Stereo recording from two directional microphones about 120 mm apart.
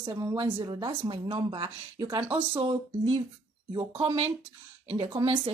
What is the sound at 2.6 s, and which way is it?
Speech, 50° right (ahead or behind).